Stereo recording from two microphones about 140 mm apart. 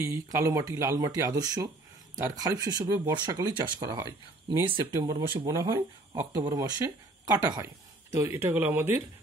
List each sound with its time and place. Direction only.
0.0 s speech: 20° right (ahead or behind)